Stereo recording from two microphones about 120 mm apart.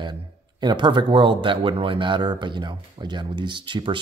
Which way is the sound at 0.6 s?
40° right (ahead or behind).